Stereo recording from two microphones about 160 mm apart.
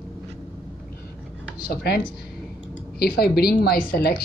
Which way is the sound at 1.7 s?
75° left (ahead or behind).